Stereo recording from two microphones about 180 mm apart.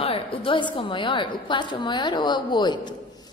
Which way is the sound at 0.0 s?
30° left (ahead or behind).